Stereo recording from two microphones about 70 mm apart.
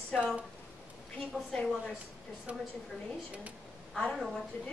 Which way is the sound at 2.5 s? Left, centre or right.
Centre.